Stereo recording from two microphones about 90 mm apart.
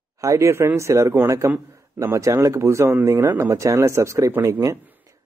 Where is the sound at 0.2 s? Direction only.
35° right (ahead or behind).